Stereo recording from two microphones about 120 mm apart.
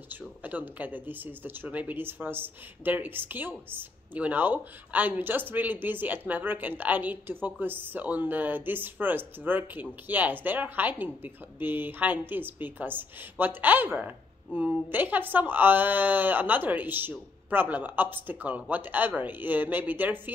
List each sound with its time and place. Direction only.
0.1 s speech: 15° right (ahead or behind)